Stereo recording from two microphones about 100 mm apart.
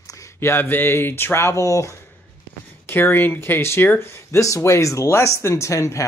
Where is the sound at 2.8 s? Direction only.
20° left (ahead or behind).